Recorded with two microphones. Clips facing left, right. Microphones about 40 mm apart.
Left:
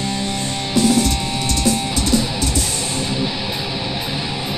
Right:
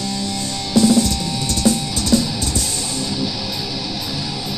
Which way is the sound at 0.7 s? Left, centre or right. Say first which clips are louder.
Right 2 dB; left.